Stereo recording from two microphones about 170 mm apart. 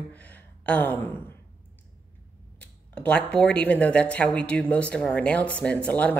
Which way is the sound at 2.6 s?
5° left (ahead or behind).